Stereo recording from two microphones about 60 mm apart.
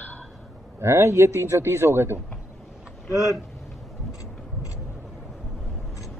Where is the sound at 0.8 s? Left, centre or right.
Right.